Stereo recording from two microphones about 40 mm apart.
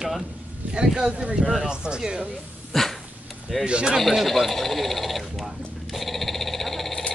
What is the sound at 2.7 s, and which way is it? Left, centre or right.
Dog, centre.